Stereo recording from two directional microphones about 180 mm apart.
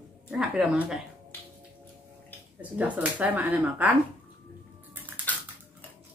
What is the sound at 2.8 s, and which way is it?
Speech, 10° right (ahead or behind).